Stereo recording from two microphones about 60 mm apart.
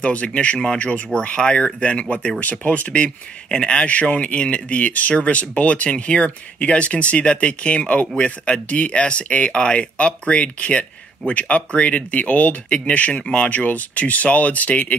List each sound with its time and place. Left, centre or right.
0.0 s speech: left